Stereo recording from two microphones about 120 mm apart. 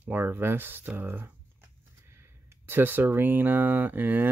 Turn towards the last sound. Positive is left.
turn(degrees=-15)  # may be behind; listen again after turning